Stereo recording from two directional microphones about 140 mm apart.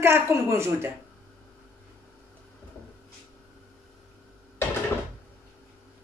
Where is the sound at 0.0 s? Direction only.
20° right (ahead or behind).